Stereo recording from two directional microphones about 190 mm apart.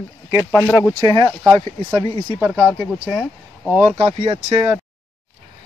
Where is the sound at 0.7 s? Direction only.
10° left (ahead or behind).